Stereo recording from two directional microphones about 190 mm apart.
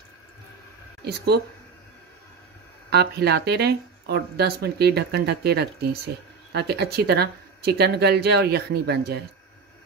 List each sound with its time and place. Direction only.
1.0 s speech: 55° right (ahead or behind)
2.9 s speech: 60° right (ahead or behind)